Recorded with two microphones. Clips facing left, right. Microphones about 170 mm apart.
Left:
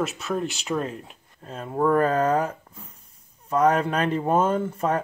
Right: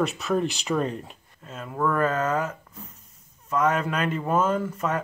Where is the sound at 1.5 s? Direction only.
35° left (ahead or behind).